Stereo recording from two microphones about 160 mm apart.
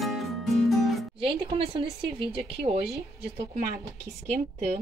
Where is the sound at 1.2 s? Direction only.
35° right (ahead or behind).